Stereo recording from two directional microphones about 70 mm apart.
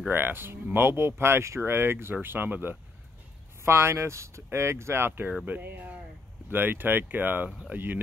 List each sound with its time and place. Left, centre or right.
0.1 s speech: right
3.6 s speech: right